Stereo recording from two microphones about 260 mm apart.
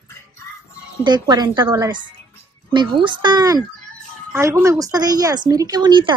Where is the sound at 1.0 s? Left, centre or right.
Centre.